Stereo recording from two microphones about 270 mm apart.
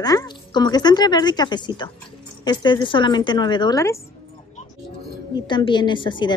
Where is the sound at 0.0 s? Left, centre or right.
Centre.